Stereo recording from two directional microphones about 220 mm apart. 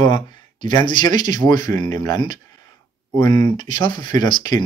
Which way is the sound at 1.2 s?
35° right (ahead or behind).